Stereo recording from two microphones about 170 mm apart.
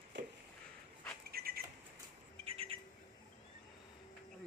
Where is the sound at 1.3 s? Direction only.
65° right (ahead or behind).